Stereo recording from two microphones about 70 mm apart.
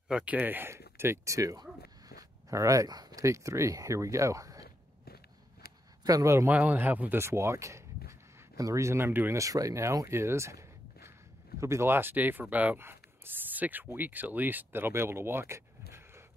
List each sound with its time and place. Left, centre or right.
0.1 s speech: centre; by 4.6 s right
6.0 s speech: right
6.5 s speech: right
7.2 s speech: right
9.3 s speech: right